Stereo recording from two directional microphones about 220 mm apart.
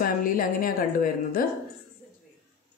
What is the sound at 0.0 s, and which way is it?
A woman's voice, 40° left (ahead or behind).